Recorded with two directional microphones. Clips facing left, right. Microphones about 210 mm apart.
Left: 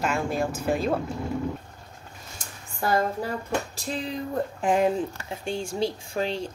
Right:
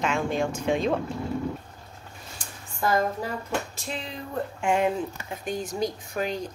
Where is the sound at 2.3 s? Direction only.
35° left (ahead or behind).